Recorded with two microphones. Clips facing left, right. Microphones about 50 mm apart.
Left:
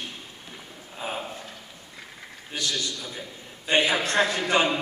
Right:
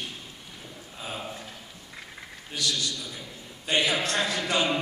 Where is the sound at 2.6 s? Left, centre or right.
Left.